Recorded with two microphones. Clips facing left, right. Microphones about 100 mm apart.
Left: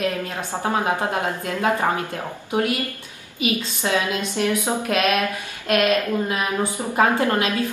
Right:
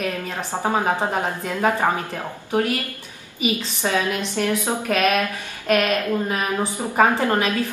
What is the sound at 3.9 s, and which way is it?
Speech, 15° left (ahead or behind).